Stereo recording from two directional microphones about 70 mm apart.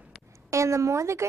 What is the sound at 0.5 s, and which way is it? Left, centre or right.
Speech, right.